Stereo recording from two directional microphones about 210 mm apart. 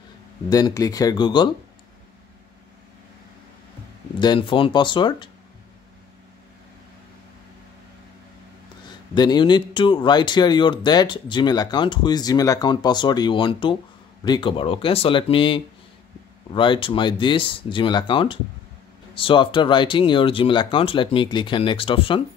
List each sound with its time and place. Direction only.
0.5 s speech: 20° left (ahead or behind)
4.2 s speech: 20° left (ahead or behind)
9.1 s speech: 20° left (ahead or behind)